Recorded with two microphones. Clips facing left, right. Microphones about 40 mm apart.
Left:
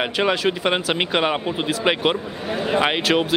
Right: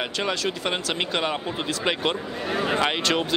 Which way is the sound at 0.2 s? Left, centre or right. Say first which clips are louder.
Left 7 dB; left.